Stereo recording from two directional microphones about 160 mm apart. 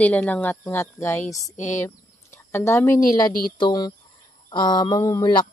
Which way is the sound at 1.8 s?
15° left (ahead or behind).